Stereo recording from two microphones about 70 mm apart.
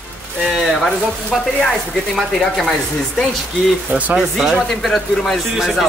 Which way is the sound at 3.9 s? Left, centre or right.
Right.